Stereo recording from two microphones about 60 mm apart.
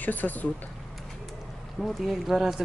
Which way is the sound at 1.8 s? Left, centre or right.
Centre.